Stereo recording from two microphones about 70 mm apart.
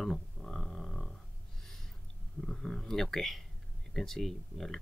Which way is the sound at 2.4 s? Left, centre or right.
Centre.